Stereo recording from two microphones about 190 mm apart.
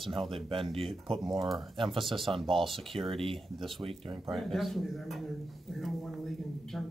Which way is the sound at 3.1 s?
30° right (ahead or behind).